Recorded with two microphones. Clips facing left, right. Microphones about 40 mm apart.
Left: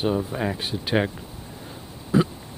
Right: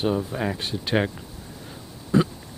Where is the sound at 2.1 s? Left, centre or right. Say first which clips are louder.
Even; centre.